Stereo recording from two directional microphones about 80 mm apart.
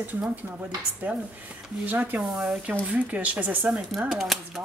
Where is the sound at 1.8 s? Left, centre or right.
Right.